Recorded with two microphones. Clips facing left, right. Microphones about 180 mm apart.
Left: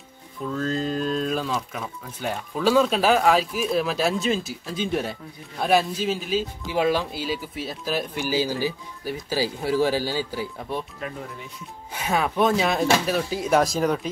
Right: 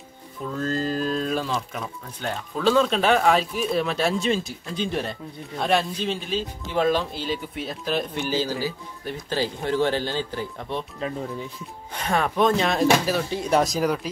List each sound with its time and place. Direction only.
0.5 s speech: centre (ahead or behind)
11.0 s speech: 30° right (ahead or behind)
11.9 s speech: 5° left (ahead or behind)